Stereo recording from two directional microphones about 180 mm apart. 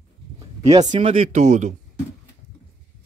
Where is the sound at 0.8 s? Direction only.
30° right (ahead or behind).